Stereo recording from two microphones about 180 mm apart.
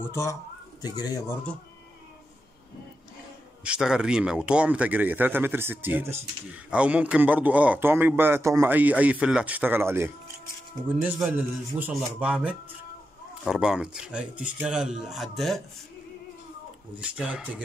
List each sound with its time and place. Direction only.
0.0 s speech: 15° left (ahead or behind)
3.6 s a man's voice: 5° right (ahead or behind)
17.0 s speech: 5° right (ahead or behind)